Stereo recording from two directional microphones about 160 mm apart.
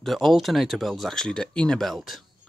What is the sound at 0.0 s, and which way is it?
Speech, centre (ahead or behind).